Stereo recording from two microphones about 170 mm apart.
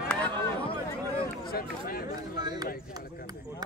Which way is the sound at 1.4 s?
60° left (ahead or behind).